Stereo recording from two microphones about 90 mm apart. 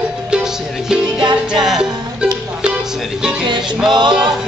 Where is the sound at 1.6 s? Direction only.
10° right (ahead or behind).